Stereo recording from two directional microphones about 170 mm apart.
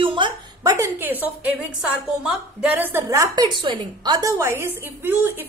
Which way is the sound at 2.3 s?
10° right (ahead or behind).